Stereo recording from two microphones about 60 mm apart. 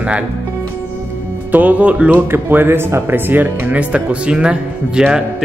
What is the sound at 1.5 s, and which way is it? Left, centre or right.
Speech, right.